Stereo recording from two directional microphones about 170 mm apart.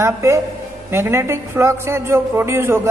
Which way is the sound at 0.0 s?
15° right (ahead or behind).